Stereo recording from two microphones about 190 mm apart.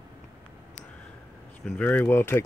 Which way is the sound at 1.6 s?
10° left (ahead or behind).